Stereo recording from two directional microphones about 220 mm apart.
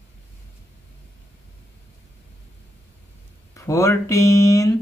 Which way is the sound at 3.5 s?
15° left (ahead or behind).